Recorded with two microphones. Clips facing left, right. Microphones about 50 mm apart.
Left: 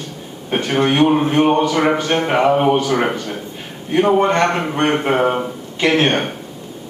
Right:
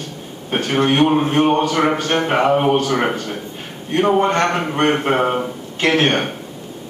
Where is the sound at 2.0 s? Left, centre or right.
Centre.